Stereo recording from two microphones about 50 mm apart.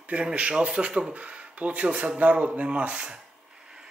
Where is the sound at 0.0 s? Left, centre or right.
Right.